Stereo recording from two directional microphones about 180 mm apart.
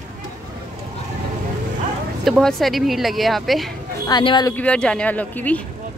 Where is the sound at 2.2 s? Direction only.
Centre (ahead or behind).